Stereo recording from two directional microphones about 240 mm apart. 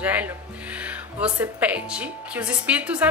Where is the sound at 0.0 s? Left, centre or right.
Centre.